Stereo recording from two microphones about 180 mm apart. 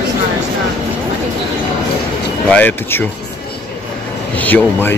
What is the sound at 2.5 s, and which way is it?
Speech, 10° left (ahead or behind).